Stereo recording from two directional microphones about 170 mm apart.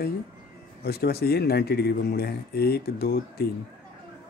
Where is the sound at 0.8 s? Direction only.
70° left (ahead or behind).